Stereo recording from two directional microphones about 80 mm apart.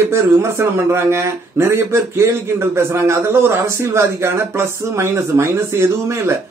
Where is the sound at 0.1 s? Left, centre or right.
Right.